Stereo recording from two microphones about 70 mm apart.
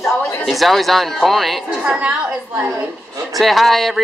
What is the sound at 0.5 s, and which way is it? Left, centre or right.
Speech, centre.